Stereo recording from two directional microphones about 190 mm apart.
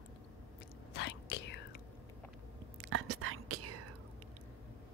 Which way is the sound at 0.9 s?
70° left (ahead or behind).